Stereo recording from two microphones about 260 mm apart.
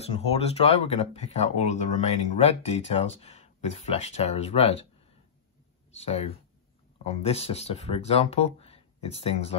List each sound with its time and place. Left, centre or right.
0.3 s speech: left
5.9 s speech: left